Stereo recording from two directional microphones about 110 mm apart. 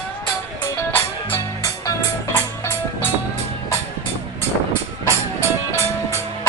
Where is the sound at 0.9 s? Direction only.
25° left (ahead or behind).